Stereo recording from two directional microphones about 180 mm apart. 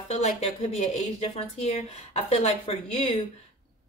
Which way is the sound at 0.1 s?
35° left (ahead or behind).